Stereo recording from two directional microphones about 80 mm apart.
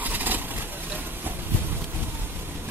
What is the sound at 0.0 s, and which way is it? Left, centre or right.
Vehicle, right.